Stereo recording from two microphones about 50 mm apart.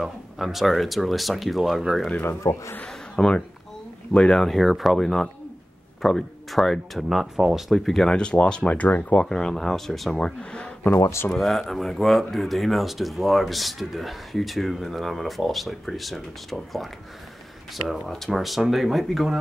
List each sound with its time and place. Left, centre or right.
0.0 s speech: centre
2.4 s speech: left
3.2 s speech: centre
4.4 s speech: centre
8.0 s speech: centre
9.1 s speech: centre
10.2 s speech: centre
11.3 s speech: centre
18.0 s speech: centre